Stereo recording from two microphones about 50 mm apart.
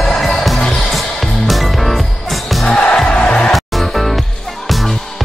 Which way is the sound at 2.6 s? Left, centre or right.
Centre.